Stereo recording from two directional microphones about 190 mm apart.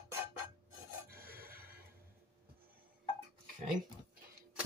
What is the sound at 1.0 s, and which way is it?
Music, 55° right (ahead or behind).